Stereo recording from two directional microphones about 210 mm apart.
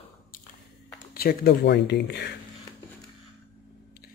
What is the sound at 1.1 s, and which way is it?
Speech, 45° left (ahead or behind).